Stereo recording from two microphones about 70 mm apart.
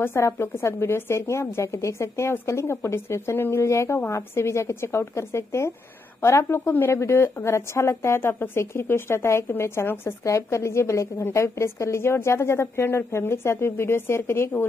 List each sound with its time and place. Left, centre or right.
0.0 s a woman's voice: left
6.6 s a woman's voice: left